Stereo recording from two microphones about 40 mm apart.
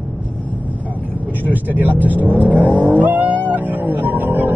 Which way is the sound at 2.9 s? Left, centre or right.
Right.